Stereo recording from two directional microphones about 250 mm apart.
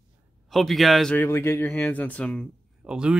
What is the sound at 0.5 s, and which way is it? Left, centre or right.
Speech, centre.